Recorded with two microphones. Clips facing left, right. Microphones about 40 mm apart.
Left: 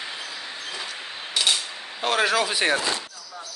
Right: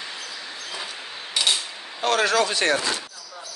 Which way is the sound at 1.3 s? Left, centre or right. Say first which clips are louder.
Even; centre.